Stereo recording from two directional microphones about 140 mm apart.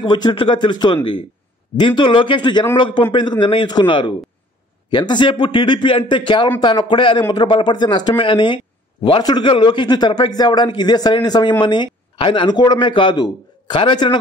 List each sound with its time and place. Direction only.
0.0 s a man's voice: 35° left (ahead or behind)